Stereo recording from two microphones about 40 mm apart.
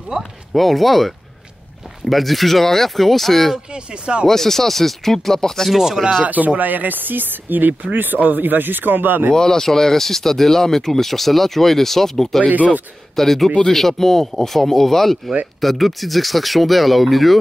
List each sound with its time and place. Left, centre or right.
0.2 s speech: centre
3.7 s speech: right
4.3 s speech: centre
5.7 s speech: centre
6.2 s speech: right
9.3 s speech: centre
12.4 s speech: right
13.1 s speech: centre